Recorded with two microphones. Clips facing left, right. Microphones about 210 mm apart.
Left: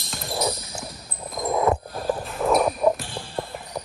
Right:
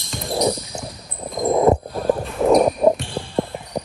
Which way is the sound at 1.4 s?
25° right (ahead or behind).